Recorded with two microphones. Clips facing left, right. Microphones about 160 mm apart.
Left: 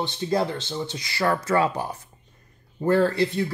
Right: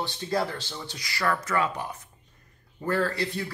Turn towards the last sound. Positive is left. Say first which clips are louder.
# left 7 dB
turn(degrees=25)  # may be behind; listen again after turning